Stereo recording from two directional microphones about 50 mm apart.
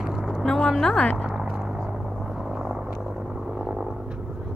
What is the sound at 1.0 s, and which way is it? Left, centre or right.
Speech, left.